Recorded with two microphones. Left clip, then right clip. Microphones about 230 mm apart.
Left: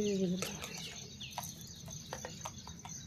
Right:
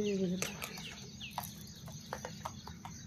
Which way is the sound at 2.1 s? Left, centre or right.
Centre.